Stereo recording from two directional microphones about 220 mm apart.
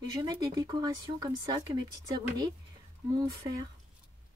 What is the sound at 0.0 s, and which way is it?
Speech, 20° right (ahead or behind).